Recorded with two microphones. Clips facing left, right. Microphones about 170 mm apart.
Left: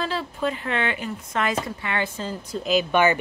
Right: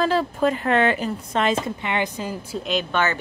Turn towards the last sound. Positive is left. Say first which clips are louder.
# left 4 dB
turn(degrees=15)  # may be behind; listen again after turning